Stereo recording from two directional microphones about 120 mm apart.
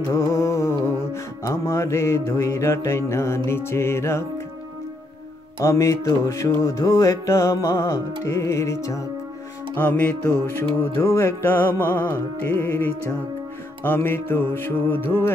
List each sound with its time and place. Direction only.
0.1 s music: 25° left (ahead or behind)
5.6 s music: 25° left (ahead or behind)
9.8 s music: 15° left (ahead or behind)